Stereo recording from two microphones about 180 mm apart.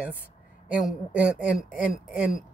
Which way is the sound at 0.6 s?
5° right (ahead or behind).